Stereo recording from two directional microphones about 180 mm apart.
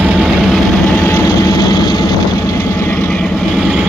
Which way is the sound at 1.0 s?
15° left (ahead or behind).